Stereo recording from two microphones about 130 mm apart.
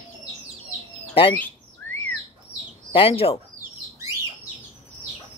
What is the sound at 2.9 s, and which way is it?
Speech, 50° left (ahead or behind).